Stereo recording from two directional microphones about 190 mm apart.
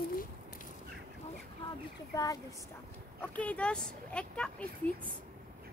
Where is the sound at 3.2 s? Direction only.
5° left (ahead or behind).